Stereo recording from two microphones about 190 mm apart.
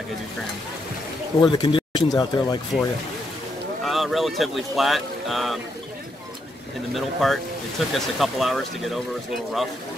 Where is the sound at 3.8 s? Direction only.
Centre (ahead or behind).